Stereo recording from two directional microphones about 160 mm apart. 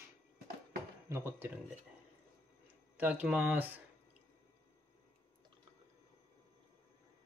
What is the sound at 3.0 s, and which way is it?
Speech, 10° right (ahead or behind).